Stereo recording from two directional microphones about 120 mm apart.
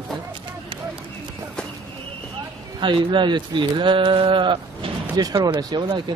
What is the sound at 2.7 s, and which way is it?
Speech, 45° right (ahead or behind).